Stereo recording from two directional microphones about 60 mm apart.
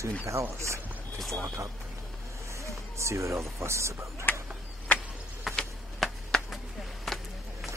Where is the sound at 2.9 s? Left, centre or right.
Right.